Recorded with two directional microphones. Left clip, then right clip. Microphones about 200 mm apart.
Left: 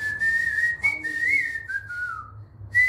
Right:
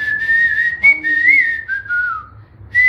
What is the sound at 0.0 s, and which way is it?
Whistling, 20° left (ahead or behind).